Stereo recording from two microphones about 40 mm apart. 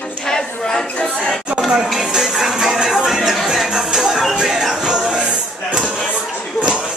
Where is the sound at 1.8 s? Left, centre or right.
Centre.